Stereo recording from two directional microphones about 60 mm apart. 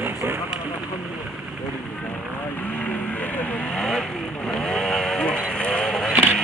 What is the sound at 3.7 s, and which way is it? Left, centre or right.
Vehicle, centre.